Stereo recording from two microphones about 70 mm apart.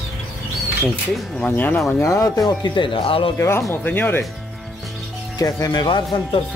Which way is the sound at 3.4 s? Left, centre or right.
Left.